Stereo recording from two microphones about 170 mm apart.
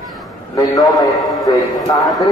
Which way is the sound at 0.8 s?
Centre (ahead or behind).